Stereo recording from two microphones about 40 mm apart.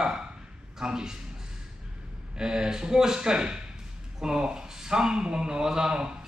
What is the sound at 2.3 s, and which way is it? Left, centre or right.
A man's voice, centre.